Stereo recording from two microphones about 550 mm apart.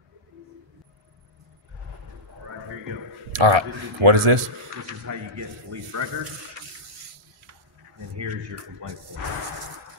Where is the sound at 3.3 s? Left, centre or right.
Right.